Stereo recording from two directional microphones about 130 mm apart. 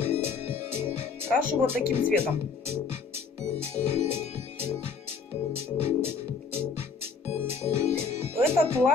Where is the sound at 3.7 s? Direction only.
20° right (ahead or behind).